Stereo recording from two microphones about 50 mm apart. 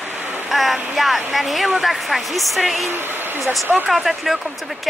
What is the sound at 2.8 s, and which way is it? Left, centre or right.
Speech, right.